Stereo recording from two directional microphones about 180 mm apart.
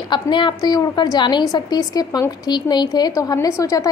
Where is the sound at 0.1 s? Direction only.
25° left (ahead or behind).